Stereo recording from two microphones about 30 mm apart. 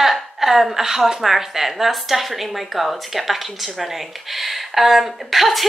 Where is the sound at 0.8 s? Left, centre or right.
Centre.